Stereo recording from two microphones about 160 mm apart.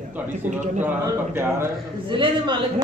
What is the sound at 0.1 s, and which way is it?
A man's voice, 10° right (ahead or behind).